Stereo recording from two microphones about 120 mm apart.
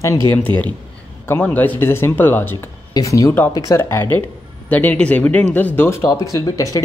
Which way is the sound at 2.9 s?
30° left (ahead or behind).